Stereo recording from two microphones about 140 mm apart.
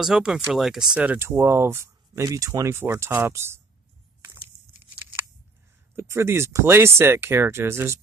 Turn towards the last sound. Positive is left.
turn(degrees=-20)  # may be behind; listen again after turning